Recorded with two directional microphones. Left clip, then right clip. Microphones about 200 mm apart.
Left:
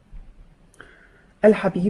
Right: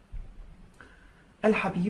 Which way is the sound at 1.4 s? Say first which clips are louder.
Left 9 dB; 40° left (ahead or behind).